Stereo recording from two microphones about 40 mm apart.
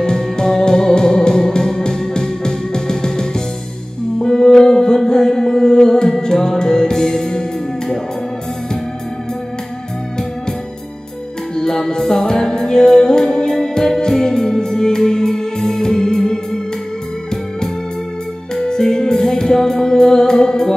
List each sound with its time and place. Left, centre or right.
0.0 s music: centre
11.5 s music: centre
18.5 s music: centre